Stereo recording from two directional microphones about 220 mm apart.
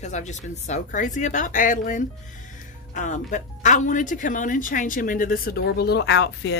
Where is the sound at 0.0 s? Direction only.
30° left (ahead or behind).